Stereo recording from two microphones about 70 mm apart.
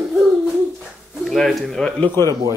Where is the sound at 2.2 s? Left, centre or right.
Left.